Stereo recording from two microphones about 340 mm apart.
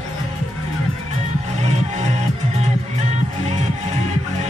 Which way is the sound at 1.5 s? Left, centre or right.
Centre.